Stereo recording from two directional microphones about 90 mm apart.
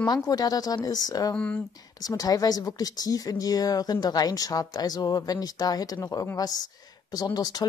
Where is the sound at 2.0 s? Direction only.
45° left (ahead or behind).